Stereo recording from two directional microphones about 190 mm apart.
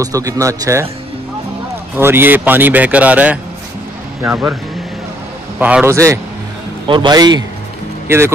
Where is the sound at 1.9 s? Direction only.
10° right (ahead or behind).